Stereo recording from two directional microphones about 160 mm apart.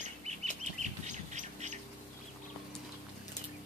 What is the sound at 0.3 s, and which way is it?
Bird, 45° right (ahead or behind).